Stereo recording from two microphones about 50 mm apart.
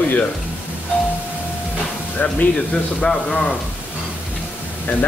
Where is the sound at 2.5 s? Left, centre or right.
Centre.